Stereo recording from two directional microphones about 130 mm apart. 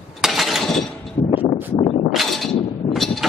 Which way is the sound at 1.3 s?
40° left (ahead or behind).